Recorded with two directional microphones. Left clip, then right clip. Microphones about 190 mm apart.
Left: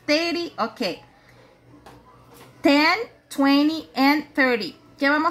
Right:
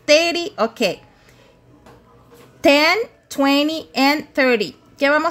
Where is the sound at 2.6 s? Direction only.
50° right (ahead or behind).